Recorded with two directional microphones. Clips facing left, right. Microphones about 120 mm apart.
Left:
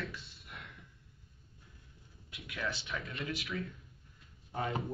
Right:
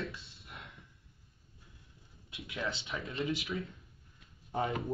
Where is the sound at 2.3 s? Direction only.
25° right (ahead or behind).